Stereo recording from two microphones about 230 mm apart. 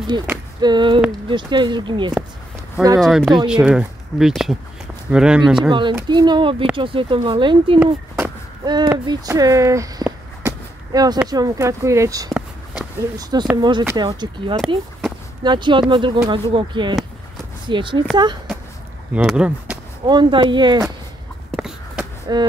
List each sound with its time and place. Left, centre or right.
0.6 s speech: centre
3.0 s speech: centre
5.7 s speech: right
8.6 s a sound: centre
11.2 s speech: centre
12.3 s a sound: centre
13.2 s speech: centre
19.1 s speech: centre
20.1 s speech: centre
21.5 s a sound: centre
22.3 s speech: centre